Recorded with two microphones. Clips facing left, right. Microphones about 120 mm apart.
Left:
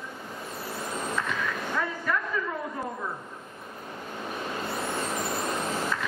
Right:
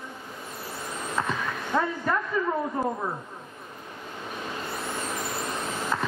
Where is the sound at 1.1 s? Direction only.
35° right (ahead or behind).